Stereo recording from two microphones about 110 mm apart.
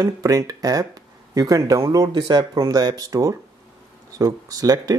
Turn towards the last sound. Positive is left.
turn(degrees=-35)  # may be behind; listen again after turning